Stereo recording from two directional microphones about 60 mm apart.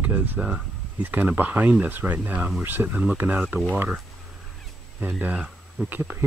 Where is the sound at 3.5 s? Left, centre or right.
Right.